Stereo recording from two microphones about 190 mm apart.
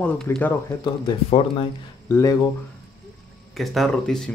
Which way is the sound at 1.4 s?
30° left (ahead or behind).